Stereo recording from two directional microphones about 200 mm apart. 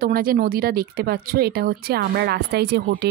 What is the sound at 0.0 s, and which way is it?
Speech, 45° right (ahead or behind).